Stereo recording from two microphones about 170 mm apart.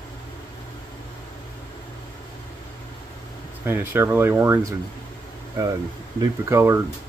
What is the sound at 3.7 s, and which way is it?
Speech, 10° right (ahead or behind).